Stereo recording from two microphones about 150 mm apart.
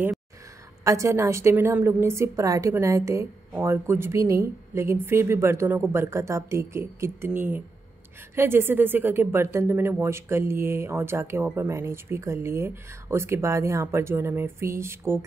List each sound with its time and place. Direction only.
0.8 s speech: 20° right (ahead or behind)